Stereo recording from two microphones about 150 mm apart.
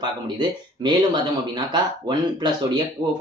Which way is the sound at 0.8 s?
30° right (ahead or behind).